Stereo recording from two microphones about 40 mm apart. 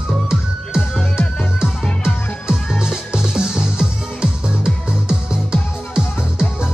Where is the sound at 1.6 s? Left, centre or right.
Centre.